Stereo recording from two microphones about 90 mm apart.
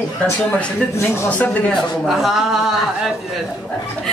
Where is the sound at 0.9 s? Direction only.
25° left (ahead or behind).